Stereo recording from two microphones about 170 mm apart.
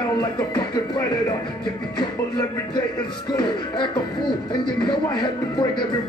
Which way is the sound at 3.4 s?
25° left (ahead or behind).